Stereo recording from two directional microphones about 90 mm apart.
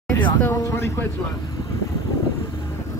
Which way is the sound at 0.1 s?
25° left (ahead or behind).